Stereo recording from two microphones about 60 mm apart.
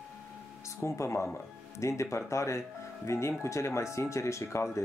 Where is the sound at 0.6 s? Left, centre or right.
Left.